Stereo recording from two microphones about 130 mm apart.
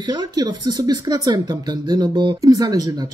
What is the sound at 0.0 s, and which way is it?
Speech, 35° right (ahead or behind).